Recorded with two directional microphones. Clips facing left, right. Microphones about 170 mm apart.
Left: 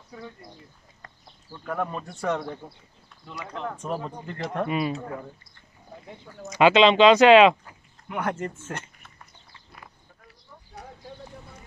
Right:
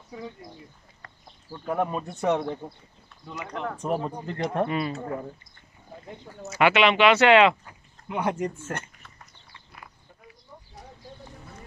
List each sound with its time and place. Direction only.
1.7 s speech: 15° right (ahead or behind)
3.8 s speech: 30° right (ahead or behind)
4.6 s speech: 15° left (ahead or behind)
6.6 s speech: 20° left (ahead or behind)
8.1 s speech: 15° right (ahead or behind)